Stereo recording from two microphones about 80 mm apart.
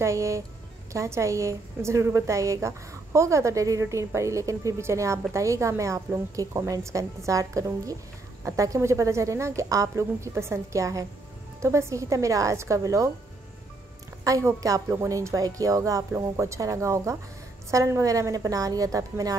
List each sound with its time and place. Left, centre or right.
0.0 s a woman's voice: right
14.2 s a woman's voice: right